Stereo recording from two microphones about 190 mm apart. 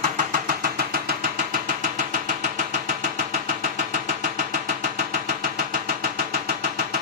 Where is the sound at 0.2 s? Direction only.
50° right (ahead or behind).